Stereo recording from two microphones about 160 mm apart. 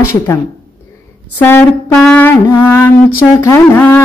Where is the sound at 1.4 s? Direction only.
10° left (ahead or behind).